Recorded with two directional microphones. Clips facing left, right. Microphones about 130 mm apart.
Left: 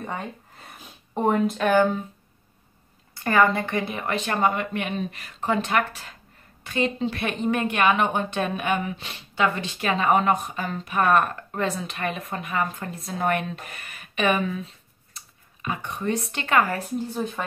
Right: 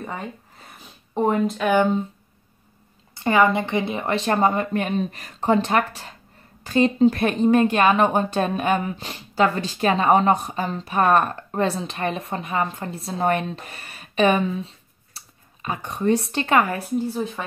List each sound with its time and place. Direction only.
0.0 s a sound: centre (ahead or behind)
1.7 s speech: 20° right (ahead or behind)
3.2 s speech: 20° right (ahead or behind)
17.1 s speech: centre (ahead or behind)